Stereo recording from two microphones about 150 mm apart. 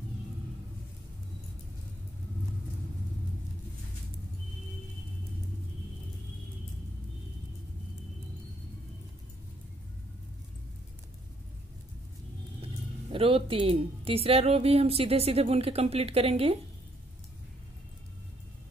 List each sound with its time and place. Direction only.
12.6 s a woman's voice: 40° right (ahead or behind)